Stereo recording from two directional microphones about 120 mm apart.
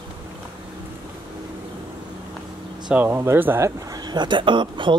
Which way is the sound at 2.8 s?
15° right (ahead or behind).